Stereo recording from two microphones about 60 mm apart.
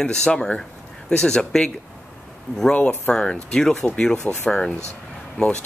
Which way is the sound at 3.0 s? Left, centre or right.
Centre.